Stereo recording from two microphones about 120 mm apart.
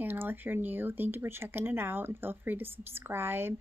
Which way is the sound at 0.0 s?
15° right (ahead or behind).